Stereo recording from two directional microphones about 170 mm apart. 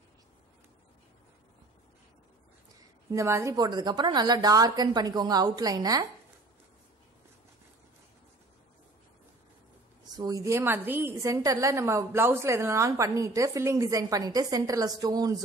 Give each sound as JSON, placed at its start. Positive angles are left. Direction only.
{"t": 3.1, "sound": "a woman's voice", "side_deg": -20}
{"t": 10.1, "sound": "a woman's voice", "side_deg": -20}